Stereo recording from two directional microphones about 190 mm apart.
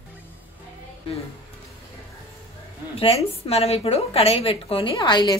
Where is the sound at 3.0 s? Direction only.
30° left (ahead or behind).